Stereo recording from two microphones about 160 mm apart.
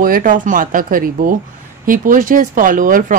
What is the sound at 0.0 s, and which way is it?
Speech, 60° right (ahead or behind).